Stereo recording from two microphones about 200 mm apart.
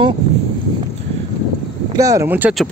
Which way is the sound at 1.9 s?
15° right (ahead or behind).